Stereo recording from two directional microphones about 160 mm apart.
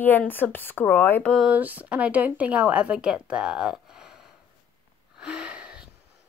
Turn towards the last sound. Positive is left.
turn(degrees=-5)  # may be behind; listen again after turning